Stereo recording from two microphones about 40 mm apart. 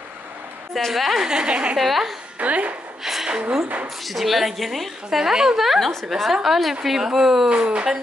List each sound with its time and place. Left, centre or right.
0.7 s a woman's voice: centre
1.2 s a woman's voice: right
1.8 s a woman's voice: centre
2.3 s speech: right
3.0 s a sound: centre
3.3 s a woman's voice: right
4.0 s a woman's voice: centre
5.1 s a woman's voice: centre
5.6 s a woman's voice: centre
7.5 s a woman's voice: right